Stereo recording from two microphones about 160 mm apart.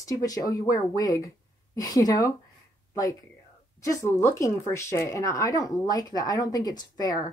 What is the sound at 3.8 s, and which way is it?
Speech, 20° left (ahead or behind).